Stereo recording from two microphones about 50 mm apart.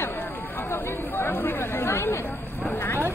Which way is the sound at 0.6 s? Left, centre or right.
Left.